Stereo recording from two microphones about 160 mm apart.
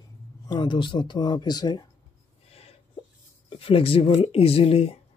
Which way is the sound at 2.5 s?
40° left (ahead or behind).